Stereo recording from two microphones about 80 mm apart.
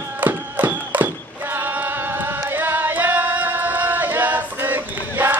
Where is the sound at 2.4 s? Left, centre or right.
Right.